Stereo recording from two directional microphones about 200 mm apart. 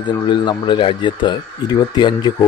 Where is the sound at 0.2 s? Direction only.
25° left (ahead or behind).